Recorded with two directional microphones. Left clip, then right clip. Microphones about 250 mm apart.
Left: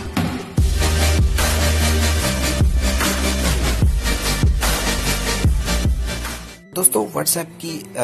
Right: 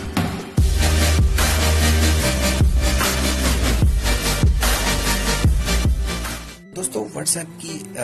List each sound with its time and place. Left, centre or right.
0.1 s music: centre